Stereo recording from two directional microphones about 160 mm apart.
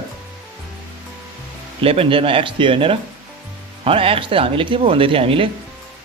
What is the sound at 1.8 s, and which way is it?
Speech, 35° right (ahead or behind).